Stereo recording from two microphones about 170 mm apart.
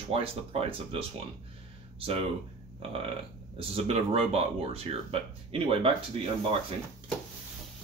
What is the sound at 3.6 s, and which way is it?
Speech, 35° right (ahead or behind).